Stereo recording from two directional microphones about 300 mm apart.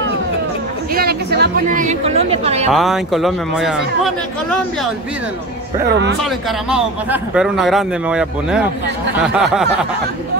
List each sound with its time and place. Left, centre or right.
0.9 s a woman's voice: right
2.7 s a man's voice: centre
5.9 s speech: right
6.2 s a man's voice: centre